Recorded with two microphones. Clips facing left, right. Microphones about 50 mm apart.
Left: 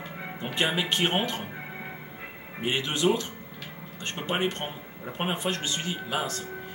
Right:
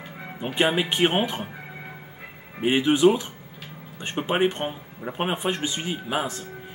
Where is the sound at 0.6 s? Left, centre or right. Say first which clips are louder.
Right 5 dB; centre.